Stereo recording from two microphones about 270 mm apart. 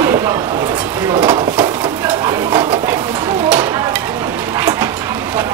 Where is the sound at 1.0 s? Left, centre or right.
Centre.